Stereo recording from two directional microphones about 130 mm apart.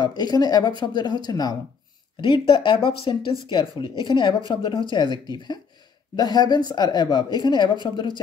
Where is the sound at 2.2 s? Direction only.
40° left (ahead or behind).